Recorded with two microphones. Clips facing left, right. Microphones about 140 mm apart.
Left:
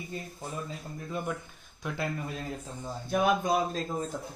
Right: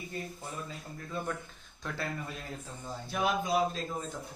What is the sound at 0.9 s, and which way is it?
Speech, 15° left (ahead or behind).